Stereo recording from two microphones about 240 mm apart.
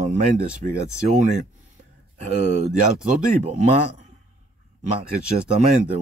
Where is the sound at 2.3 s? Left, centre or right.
Right.